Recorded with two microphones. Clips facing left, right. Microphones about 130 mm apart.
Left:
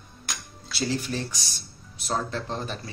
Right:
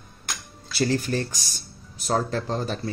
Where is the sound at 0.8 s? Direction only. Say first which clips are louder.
Right 5 dB; 45° right (ahead or behind).